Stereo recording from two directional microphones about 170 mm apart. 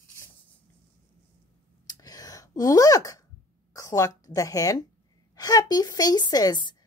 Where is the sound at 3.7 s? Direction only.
20° left (ahead or behind).